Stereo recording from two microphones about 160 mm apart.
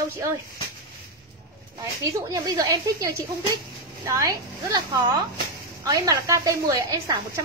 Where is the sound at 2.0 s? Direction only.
20° right (ahead or behind).